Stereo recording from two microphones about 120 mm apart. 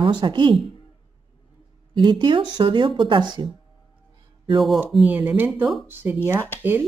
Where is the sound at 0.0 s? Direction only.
40° right (ahead or behind).